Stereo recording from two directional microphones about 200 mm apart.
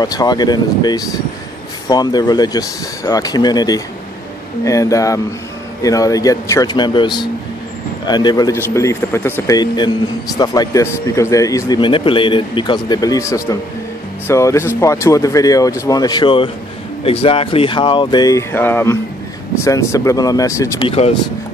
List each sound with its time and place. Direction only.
0.0 s a man's voice: 20° left (ahead or behind)
20.8 s a man's voice: 30° left (ahead or behind)